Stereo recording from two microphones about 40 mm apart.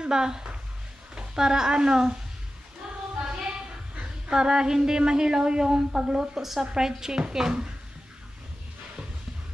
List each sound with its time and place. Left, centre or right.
0.0 s a woman's voice: centre
3.3 s a woman's voice: right